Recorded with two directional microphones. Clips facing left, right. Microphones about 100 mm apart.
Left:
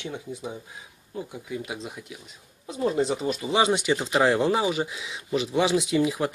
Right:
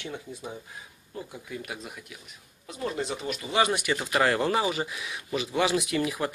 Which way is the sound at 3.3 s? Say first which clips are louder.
Left 1 dB; 20° left (ahead or behind).